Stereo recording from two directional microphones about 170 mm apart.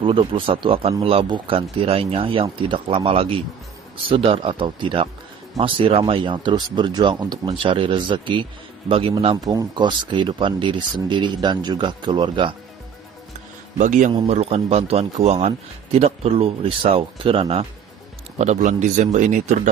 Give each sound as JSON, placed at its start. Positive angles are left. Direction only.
{"t": 0.0, "sound": "a man's voice", "side_deg": -30}
{"t": 9.4, "sound": "speech", "side_deg": -20}
{"t": 13.7, "sound": "a man's voice", "side_deg": -45}
{"t": 18.4, "sound": "speech", "side_deg": -45}